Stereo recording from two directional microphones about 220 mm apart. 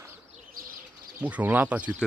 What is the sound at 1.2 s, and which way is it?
Speech, 5° right (ahead or behind).